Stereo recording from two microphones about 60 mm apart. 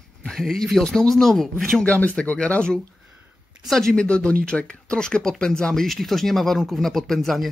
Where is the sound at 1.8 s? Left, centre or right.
Left.